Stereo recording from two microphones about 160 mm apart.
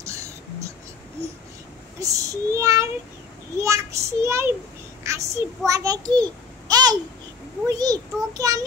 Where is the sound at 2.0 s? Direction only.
20° right (ahead or behind).